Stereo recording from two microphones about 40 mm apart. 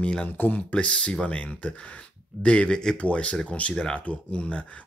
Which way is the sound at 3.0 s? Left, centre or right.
Left.